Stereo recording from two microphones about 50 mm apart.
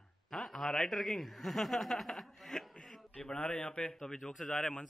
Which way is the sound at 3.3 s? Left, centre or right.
Left.